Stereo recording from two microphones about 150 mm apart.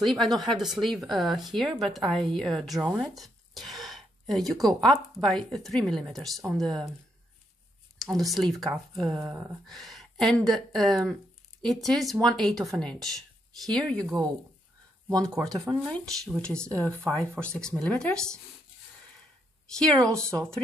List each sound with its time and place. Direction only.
0.0 s a woman's voice: centre (ahead or behind)
8.0 s a woman's voice: centre (ahead or behind)
9.7 s a woman's voice: centre (ahead or behind)
15.0 s speech: 20° right (ahead or behind)
15.5 s a woman's voice: 5° left (ahead or behind)
19.8 s a woman's voice: 5° left (ahead or behind)